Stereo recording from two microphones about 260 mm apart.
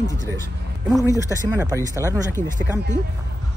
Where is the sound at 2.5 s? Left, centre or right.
Right.